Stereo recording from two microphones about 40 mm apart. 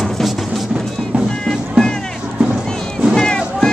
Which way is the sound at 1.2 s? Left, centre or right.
Centre.